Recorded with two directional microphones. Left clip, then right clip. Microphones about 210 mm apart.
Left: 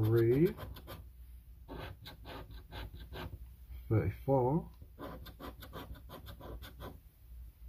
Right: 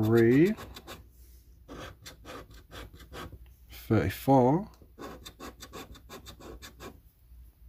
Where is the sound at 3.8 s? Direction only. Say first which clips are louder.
Right 8 dB; 40° right (ahead or behind).